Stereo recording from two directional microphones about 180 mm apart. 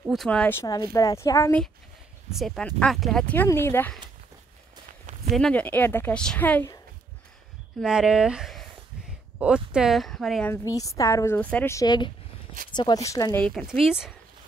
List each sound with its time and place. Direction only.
0.0 s a woman's voice: centre (ahead or behind); by 1.6 s 15° left (ahead or behind)
2.3 s a woman's voice: centre (ahead or behind)
5.3 s a woman's voice: 5° left (ahead or behind)
7.8 s speech: 5° right (ahead or behind)
10.5 s a woman's voice: 20° left (ahead or behind)
13.4 s speech: centre (ahead or behind)